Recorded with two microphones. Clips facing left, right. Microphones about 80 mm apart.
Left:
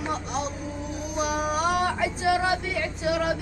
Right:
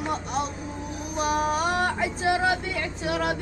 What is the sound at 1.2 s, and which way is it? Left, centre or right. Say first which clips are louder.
Music: right 2 dB; centre.